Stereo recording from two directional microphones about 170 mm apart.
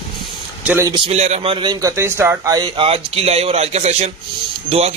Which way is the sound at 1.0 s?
40° right (ahead or behind).